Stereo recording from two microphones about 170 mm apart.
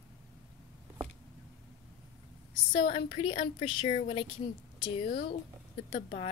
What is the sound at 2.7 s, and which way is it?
A woman's voice, 30° left (ahead or behind).